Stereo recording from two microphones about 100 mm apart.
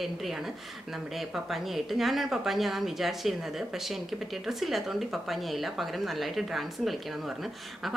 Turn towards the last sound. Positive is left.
turn(degrees=0)  # may be behind; listen again after turning